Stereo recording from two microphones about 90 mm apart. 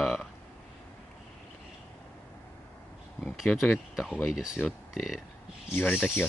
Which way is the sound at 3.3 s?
Centre (ahead or behind).